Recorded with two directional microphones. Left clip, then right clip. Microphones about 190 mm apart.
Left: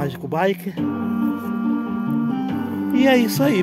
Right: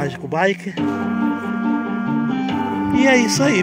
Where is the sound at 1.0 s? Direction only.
40° left (ahead or behind).